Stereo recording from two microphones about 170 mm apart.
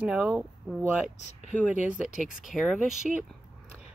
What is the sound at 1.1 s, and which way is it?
Speech, 40° left (ahead or behind).